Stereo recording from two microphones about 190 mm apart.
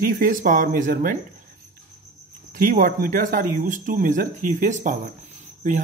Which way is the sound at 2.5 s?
45° right (ahead or behind).